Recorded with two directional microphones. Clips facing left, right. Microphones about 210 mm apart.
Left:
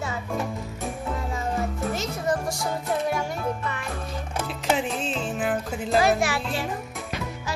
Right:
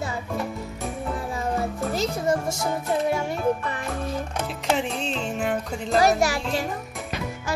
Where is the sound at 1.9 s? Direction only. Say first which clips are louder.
Right 5 dB; 30° right (ahead or behind).